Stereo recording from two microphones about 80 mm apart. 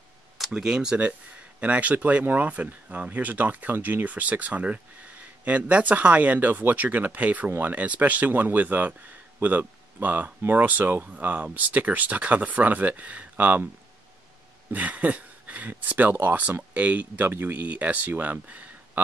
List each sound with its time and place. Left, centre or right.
0.4 s speech: centre
1.6 s speech: centre
14.7 s speech: centre